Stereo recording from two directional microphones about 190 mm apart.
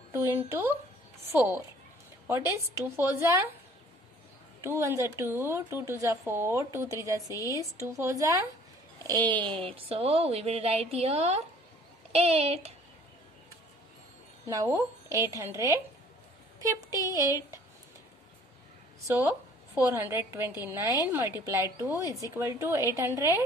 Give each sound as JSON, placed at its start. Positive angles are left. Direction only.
{"t": 0.1, "sound": "a woman's voice", "side_deg": -10}
{"t": 2.8, "sound": "a woman's voice", "side_deg": -15}
{"t": 4.6, "sound": "a woman's voice", "side_deg": -15}
{"t": 7.5, "sound": "speech", "side_deg": 15}
{"t": 7.8, "sound": "a woman's voice", "side_deg": -15}
{"t": 14.5, "sound": "a woman's voice", "side_deg": -15}
{"t": 19.7, "sound": "a woman's voice", "side_deg": -10}